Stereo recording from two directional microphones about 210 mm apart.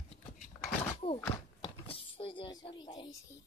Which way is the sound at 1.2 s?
25° left (ahead or behind).